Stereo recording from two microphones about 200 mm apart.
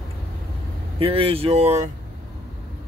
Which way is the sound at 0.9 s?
30° right (ahead or behind).